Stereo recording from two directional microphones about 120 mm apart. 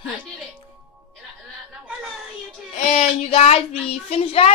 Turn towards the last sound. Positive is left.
turn(degrees=55)  # may be behind; listen again after turning